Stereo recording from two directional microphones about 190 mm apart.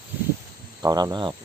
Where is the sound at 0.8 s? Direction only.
20° right (ahead or behind).